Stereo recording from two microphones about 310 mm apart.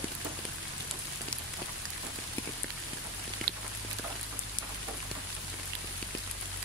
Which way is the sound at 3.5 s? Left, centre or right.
Right.